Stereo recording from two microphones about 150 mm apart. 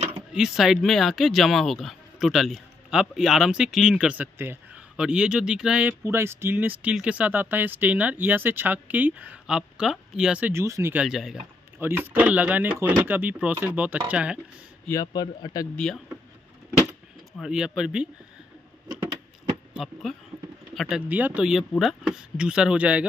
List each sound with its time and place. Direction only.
0.3 s speech: 5° right (ahead or behind)
11.1 s speech: 5° right (ahead or behind)
11.8 s speech: 15° right (ahead or behind)
14.9 s a man's voice: 25° left (ahead or behind)
15.7 s speech: 5° left (ahead or behind)
17.3 s speech: 5° right (ahead or behind)
19.7 s speech: centre (ahead or behind)
21.1 s speech: 10° right (ahead or behind)